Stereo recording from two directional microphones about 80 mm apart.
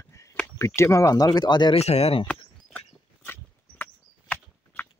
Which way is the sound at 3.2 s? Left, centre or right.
Left.